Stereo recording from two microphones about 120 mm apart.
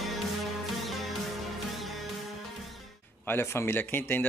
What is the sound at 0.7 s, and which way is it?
Music, centre (ahead or behind).